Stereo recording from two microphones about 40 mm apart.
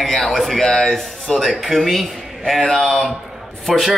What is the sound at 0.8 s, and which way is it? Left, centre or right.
Speech, left.